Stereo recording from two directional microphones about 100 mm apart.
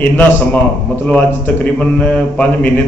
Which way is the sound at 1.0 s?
15° left (ahead or behind).